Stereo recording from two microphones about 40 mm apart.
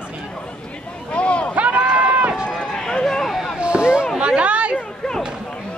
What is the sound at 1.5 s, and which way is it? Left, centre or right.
Run, right.